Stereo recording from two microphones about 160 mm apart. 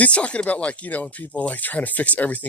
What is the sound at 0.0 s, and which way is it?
Speech, 10° left (ahead or behind).